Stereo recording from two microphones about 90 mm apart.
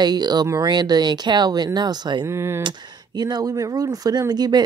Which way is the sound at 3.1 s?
45° right (ahead or behind).